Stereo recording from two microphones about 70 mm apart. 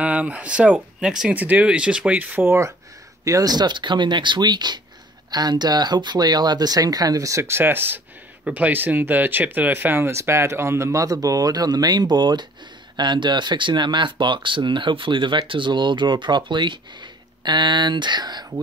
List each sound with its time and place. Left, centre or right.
0.0 s speech: centre
1.3 s speech: right
3.3 s speech: right